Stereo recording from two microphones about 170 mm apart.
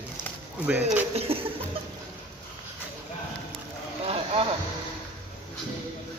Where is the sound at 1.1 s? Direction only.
35° right (ahead or behind).